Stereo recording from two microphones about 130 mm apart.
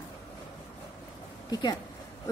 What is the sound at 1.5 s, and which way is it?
Speech, 30° left (ahead or behind).